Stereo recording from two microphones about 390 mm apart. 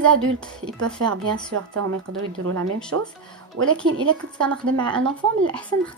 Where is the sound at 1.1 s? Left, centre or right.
Right.